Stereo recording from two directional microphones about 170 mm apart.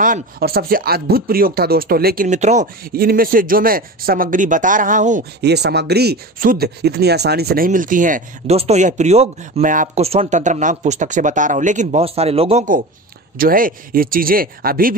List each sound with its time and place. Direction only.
0.4 s speech: 65° right (ahead or behind)
2.2 s speech: 45° right (ahead or behind)
2.8 s speech: 60° right (ahead or behind)
5.4 s speech: 75° right (ahead or behind); by 12.6 s 35° right (ahead or behind)
13.4 s speech: 55° right (ahead or behind)